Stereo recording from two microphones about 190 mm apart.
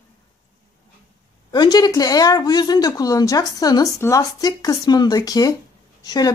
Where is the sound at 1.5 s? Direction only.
20° left (ahead or behind).